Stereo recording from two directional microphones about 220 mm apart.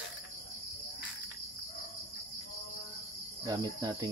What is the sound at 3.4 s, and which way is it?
Cricket, 15° right (ahead or behind).